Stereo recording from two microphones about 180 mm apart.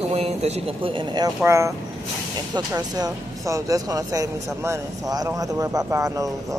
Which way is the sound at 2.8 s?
20° right (ahead or behind).